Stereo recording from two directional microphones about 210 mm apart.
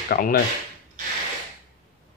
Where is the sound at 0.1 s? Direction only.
45° left (ahead or behind).